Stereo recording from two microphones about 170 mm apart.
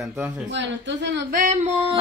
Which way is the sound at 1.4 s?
40° right (ahead or behind).